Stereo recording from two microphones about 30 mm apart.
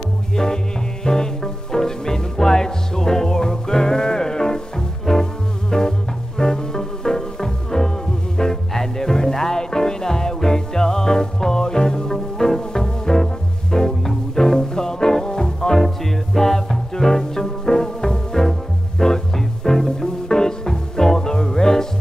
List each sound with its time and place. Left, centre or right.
0.3 s music: left